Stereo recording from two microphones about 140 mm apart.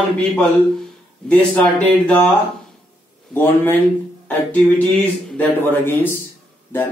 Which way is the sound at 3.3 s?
15° left (ahead or behind).